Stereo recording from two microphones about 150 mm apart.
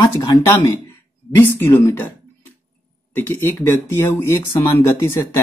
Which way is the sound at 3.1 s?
15° left (ahead or behind).